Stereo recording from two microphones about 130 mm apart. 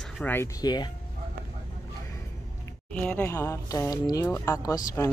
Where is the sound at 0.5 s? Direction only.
35° left (ahead or behind).